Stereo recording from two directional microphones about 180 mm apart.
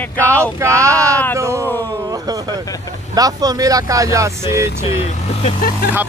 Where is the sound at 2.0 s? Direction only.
20° right (ahead or behind).